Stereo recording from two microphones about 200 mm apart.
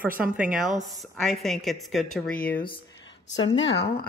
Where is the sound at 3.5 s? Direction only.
55° left (ahead or behind).